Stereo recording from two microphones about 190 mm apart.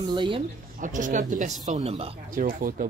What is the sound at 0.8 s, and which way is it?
Speech, 45° right (ahead or behind).